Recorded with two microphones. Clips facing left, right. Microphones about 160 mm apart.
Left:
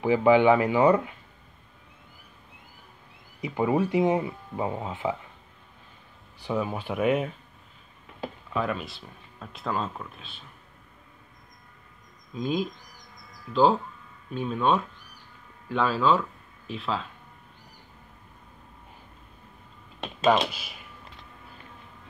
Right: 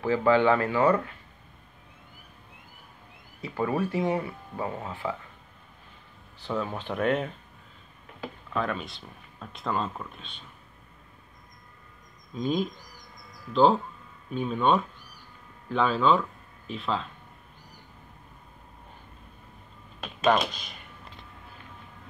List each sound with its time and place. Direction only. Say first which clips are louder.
0.0 s speech: left 3 dB; 15° left (ahead or behind)
3.3 s speech: left 3 dB; 15° left (ahead or behind)
6.4 s speech: left 2 dB; 10° left (ahead or behind)
8.5 s speech: left 1 dB; 5° left (ahead or behind)
12.4 s speech: even; centre (ahead or behind)
20.5 s speech: even; 5° left (ahead or behind)